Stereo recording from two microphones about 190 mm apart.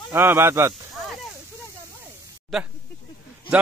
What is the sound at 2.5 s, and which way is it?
Speech, centre (ahead or behind).